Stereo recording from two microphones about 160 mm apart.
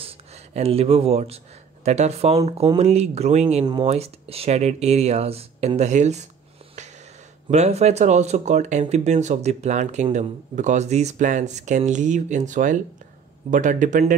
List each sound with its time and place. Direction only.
0.6 s speech: 40° right (ahead or behind)
7.4 s speech: 40° right (ahead or behind)